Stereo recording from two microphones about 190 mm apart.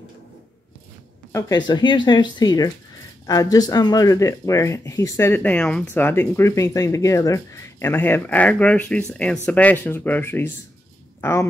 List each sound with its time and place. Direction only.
1.3 s speech: 20° left (ahead or behind)